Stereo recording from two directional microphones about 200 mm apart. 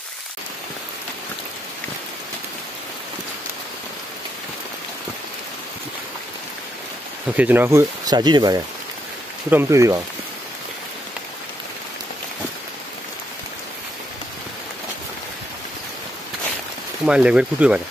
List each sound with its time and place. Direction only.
7.3 s speech: 10° right (ahead or behind)
17.0 s speech: 5° right (ahead or behind)